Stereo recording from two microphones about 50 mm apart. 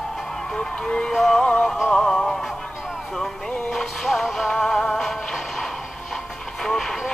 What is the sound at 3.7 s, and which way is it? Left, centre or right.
Music, centre.